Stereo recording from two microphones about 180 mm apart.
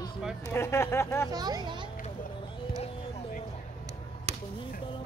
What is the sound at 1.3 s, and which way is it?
Speech, 20° right (ahead or behind).